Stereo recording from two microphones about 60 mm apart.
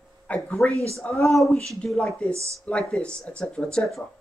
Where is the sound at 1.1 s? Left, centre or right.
Centre.